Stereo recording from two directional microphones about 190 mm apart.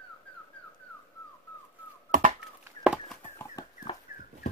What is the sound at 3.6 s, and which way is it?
Dog, 20° left (ahead or behind).